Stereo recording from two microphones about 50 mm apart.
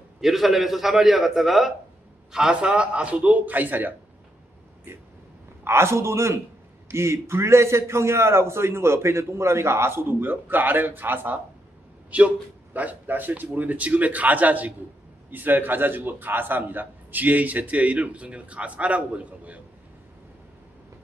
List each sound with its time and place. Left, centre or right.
0.2 s a man's voice: centre
2.3 s a man's voice: centre; by 3.9 s right
5.6 s a man's voice: right
12.1 s a man's voice: right